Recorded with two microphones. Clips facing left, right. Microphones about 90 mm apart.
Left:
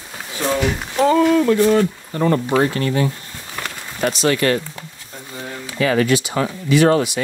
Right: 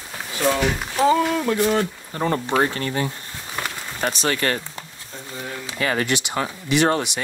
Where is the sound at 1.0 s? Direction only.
10° right (ahead or behind).